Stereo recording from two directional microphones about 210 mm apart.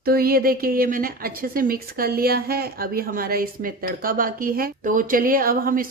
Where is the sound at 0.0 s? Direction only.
45° right (ahead or behind).